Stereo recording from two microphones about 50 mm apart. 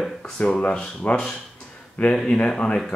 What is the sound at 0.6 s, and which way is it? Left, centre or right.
Speech, left.